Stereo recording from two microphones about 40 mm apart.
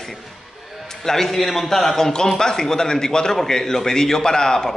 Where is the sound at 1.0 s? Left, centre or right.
Centre.